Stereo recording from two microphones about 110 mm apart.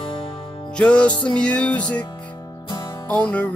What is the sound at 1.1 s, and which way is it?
Music, 45° left (ahead or behind).